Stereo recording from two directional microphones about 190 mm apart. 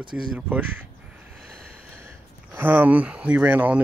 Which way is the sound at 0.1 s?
5° right (ahead or behind).